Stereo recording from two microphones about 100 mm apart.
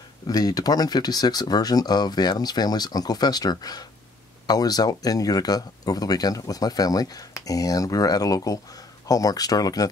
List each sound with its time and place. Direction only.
0.3 s speech: 40° left (ahead or behind)